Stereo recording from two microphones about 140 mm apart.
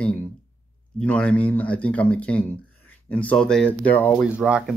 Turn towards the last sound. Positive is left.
turn(degrees=-5)  # may be behind; listen again after turning